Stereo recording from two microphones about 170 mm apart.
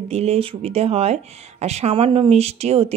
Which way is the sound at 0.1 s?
35° right (ahead or behind).